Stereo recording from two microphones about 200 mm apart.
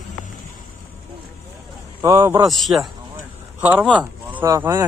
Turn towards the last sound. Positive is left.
turn(degrees=-15)  # may be behind; listen again after turning